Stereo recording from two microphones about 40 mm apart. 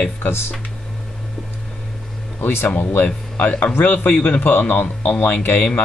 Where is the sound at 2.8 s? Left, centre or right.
Left.